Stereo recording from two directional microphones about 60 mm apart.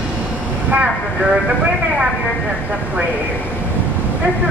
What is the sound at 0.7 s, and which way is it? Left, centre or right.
Vehicle, centre.